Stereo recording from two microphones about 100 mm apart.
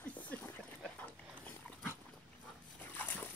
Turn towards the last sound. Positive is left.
turn(degrees=20)  # may be behind; listen again after turning